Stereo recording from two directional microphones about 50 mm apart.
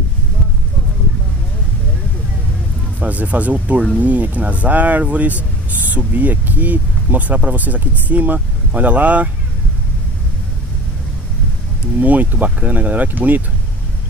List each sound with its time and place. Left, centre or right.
3.0 s speech: right
12.0 s speech: right